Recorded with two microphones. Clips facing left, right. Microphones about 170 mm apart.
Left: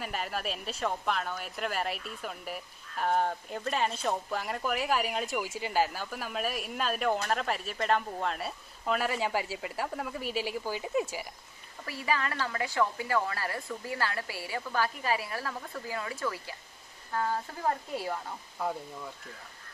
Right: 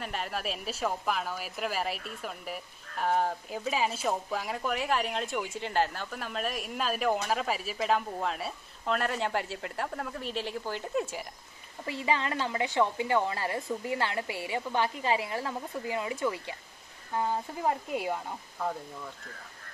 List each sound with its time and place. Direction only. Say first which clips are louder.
0.0 s speech: even; centre (ahead or behind)
11.8 s a woman's voice: right 2 dB; 20° right (ahead or behind)
18.6 s speech: even; 5° left (ahead or behind)